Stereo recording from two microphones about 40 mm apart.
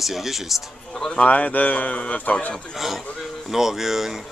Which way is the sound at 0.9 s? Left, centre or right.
Centre.